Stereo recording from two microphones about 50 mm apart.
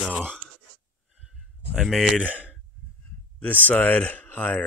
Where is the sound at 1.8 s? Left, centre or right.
Centre.